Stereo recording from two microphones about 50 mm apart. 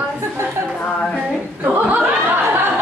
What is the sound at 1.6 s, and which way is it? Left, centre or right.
Chuckle, right.